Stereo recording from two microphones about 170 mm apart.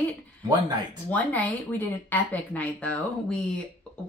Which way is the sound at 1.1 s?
10° left (ahead or behind).